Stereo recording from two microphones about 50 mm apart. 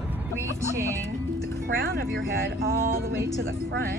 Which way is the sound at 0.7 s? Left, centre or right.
Right.